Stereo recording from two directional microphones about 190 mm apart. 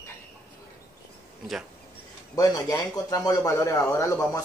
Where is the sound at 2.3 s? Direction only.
20° left (ahead or behind).